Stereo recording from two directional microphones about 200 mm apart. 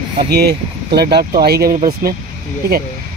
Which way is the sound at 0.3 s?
55° right (ahead or behind).